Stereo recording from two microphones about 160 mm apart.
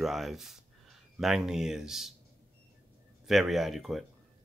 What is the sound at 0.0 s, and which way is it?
Speech, centre (ahead or behind).